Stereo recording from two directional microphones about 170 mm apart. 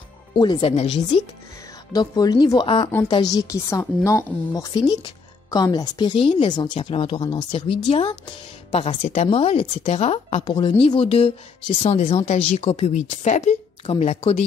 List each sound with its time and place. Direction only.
0.4 s speech: 30° left (ahead or behind)
1.9 s a woman's voice: 20° left (ahead or behind); by 14.4 s 40° left (ahead or behind)